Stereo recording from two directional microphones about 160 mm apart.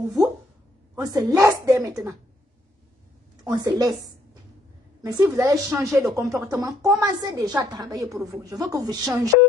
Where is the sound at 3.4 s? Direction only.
25° right (ahead or behind).